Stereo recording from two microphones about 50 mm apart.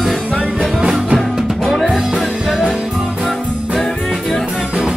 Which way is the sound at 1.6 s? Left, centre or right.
Centre.